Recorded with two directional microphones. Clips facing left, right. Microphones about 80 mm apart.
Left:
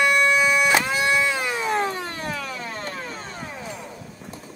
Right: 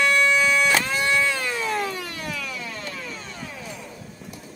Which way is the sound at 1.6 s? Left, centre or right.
Left.